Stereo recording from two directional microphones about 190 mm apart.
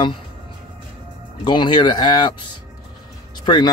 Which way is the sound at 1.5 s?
25° left (ahead or behind).